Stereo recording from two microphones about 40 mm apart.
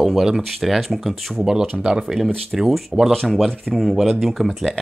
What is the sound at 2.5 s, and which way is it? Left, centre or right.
Speech, centre.